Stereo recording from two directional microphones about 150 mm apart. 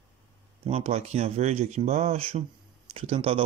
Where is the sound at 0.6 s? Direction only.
40° right (ahead or behind).